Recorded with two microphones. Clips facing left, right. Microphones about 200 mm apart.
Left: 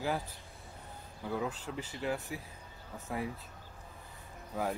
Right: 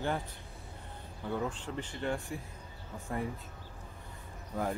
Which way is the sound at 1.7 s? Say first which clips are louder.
Right 1 dB; 5° left (ahead or behind).